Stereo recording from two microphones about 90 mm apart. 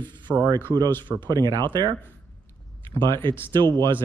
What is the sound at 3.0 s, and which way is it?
Speech, 60° right (ahead or behind).